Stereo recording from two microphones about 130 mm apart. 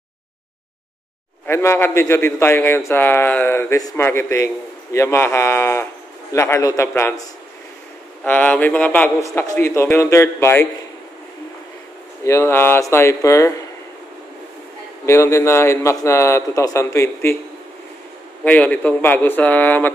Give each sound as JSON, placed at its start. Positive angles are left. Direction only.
{"t": 1.4, "sound": "a man's voice", "side_deg": 20}
{"t": 8.2, "sound": "a man's voice", "side_deg": 10}
{"t": 9.2, "sound": "a man's voice", "side_deg": 20}
{"t": 12.3, "sound": "a man's voice", "side_deg": 20}
{"t": 15.0, "sound": "a man's voice", "side_deg": 20}
{"t": 18.4, "sound": "a man's voice", "side_deg": 10}